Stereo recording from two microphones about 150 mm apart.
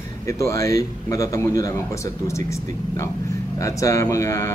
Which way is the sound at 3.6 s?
20° left (ahead or behind).